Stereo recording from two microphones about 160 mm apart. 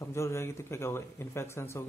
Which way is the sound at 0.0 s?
15° left (ahead or behind).